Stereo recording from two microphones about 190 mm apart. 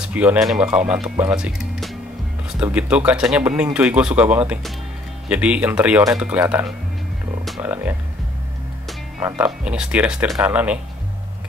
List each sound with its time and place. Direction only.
0.0 s speech: 10° right (ahead or behind)
6.4 s speech: 15° right (ahead or behind)
7.4 s speech: 5° right (ahead or behind)
9.2 s speech: 10° right (ahead or behind)